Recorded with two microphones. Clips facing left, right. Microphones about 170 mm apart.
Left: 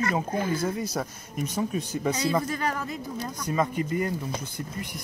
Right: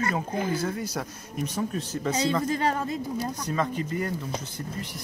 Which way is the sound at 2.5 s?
30° right (ahead or behind).